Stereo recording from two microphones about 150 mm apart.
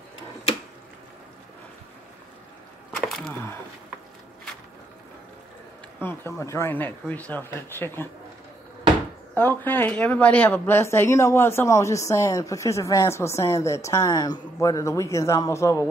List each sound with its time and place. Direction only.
3.1 s wood: centre (ahead or behind)
5.9 s speech: 15° left (ahead or behind)
9.3 s speech: 10° left (ahead or behind)